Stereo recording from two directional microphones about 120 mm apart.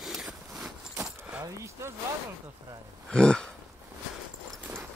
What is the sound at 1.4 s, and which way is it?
Speech, 25° right (ahead or behind).